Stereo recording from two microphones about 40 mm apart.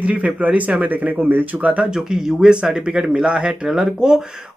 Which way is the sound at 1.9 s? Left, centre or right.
Centre.